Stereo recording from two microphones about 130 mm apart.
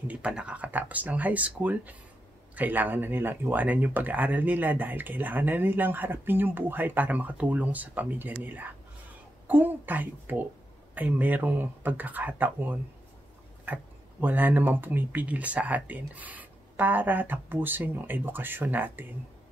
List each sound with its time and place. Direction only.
0.1 s speech: 10° right (ahead or behind)